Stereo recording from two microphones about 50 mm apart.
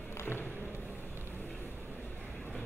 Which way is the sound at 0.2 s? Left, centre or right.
Left.